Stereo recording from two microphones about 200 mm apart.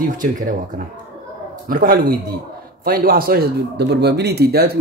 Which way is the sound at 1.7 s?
45° right (ahead or behind).